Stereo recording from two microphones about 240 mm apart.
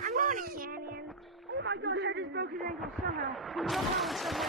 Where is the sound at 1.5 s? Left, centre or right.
Right.